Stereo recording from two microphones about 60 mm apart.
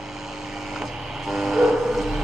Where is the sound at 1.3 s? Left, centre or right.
Centre.